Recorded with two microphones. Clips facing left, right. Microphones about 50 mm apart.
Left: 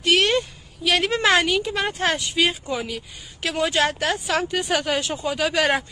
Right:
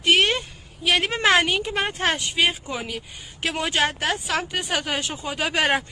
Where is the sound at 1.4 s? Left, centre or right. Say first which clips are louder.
Left 1 dB; right.